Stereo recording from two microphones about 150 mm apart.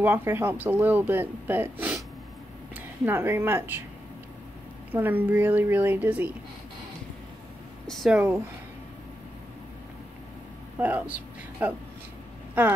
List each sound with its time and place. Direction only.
0.0 s speech: 15° right (ahead or behind)
4.9 s speech: 10° right (ahead or behind)
7.8 s a sound: centre (ahead or behind)
10.8 s speech: 10° right (ahead or behind)